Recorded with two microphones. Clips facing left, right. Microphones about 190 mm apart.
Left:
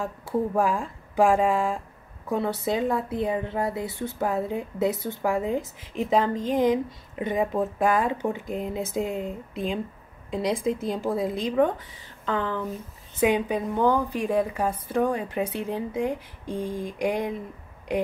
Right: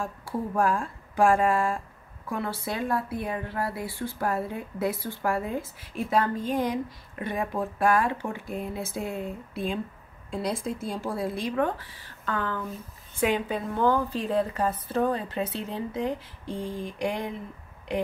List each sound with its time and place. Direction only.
0.0 s a woman's voice: 20° left (ahead or behind)
10.8 s a woman's voice: 20° left (ahead or behind)